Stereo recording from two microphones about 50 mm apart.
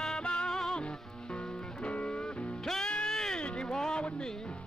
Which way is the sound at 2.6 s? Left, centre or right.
Centre.